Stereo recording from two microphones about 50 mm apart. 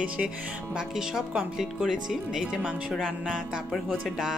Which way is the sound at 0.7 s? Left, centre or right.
Centre.